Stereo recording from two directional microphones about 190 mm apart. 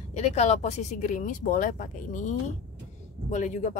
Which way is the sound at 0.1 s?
35° left (ahead or behind).